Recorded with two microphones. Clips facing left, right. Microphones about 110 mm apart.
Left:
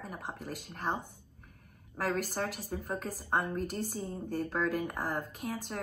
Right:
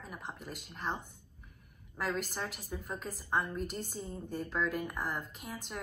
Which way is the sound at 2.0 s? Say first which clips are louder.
Left 3 dB; 50° left (ahead or behind).